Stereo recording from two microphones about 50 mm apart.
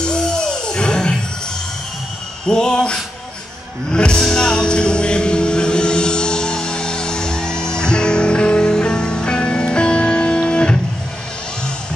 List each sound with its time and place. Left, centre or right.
0.0 s music: centre
2.4 s a sound: centre
3.9 s music: centre
4.2 s vehicle: centre